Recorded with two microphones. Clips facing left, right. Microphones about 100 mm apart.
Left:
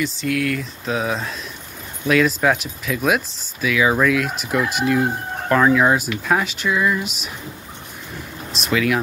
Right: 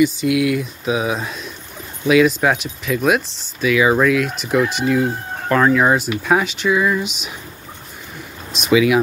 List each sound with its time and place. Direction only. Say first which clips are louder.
0.0 s speech: right 6 dB; 10° right (ahead or behind)
8.5 s speech: right 6 dB; 5° right (ahead or behind)